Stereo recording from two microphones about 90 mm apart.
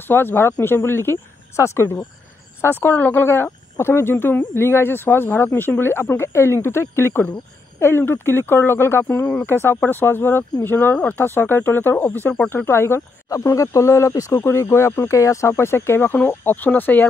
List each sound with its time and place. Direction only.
0.0 s speech: 25° left (ahead or behind)